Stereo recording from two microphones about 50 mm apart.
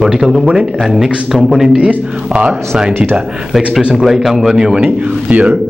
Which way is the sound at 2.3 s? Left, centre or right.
Centre.